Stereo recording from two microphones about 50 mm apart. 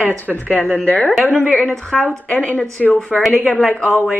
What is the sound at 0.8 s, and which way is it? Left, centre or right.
A woman's voice, centre.